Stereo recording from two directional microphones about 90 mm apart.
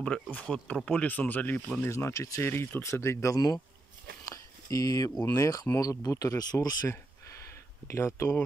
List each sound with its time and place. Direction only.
0.0 s speech: 15° left (ahead or behind); by 3.6 s 45° left (ahead or behind)
4.3 s a sound: 40° left (ahead or behind)
5.2 s speech: 35° left (ahead or behind); by 6.8 s 50° left (ahead or behind)
7.9 s speech: 30° left (ahead or behind)